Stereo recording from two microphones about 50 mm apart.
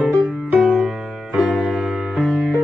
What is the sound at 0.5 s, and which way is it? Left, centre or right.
Music, centre.